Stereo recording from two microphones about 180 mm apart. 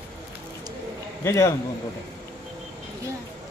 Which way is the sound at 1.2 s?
15° left (ahead or behind).